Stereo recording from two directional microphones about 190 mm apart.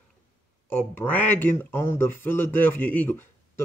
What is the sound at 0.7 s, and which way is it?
Speech, 10° left (ahead or behind).